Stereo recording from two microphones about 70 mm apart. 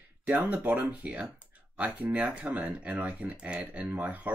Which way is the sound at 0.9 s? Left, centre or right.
Centre.